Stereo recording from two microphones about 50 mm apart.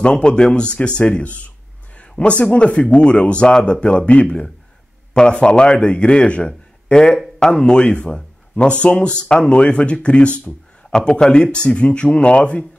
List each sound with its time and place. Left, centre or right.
0.0 s speech: centre